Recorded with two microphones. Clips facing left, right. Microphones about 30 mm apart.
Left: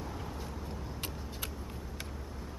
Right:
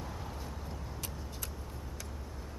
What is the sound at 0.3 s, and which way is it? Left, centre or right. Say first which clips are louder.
Vehicle: left 2 dB; centre.